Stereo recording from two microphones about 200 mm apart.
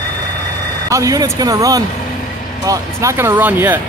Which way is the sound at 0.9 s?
15° right (ahead or behind).